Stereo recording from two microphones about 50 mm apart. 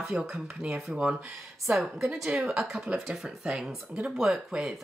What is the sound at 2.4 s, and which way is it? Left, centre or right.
Speech, centre.